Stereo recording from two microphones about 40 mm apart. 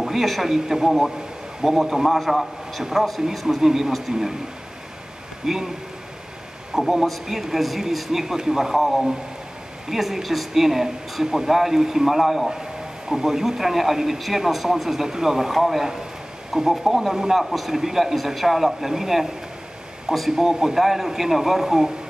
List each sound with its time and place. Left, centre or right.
0.0 s a man's voice: centre
5.4 s speech: centre
6.7 s speech: centre
8.7 s a man's voice: centre